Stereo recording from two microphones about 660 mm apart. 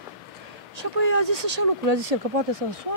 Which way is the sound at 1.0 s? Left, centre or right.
Right.